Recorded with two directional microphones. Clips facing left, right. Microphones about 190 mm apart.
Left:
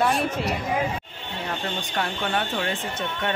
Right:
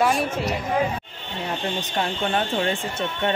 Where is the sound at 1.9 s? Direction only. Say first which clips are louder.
Right 2 dB; 25° right (ahead or behind).